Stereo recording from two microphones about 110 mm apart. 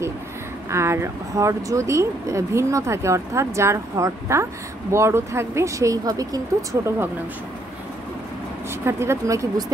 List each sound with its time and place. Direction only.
0.7 s speech: 25° right (ahead or behind)
8.8 s speech: 25° right (ahead or behind)